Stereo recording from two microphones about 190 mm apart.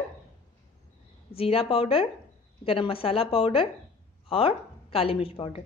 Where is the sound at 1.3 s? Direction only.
30° left (ahead or behind).